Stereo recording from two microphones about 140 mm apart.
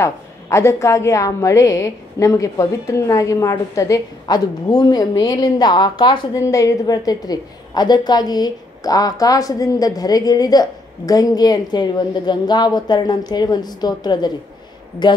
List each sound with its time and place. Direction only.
0.0 s a woman's voice: 20° left (ahead or behind)